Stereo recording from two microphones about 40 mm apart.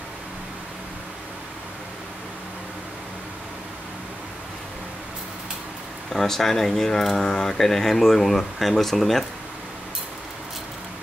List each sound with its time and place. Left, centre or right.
6.1 s speech: centre